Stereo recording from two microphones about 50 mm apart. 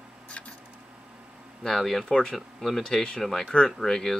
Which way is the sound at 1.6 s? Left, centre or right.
Centre.